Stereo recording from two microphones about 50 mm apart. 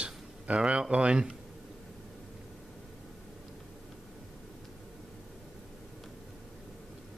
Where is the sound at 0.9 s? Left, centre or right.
Right.